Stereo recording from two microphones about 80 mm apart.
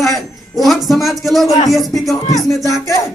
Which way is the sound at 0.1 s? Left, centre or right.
Centre.